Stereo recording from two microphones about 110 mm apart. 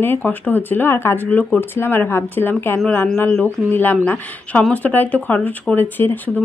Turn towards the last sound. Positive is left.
turn(degrees=15)  # may be behind; listen again after turning